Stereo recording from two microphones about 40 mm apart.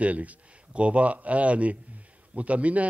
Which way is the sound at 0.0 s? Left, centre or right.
Right.